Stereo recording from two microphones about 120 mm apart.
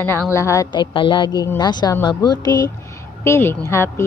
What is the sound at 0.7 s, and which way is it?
A woman's voice, 45° left (ahead or behind).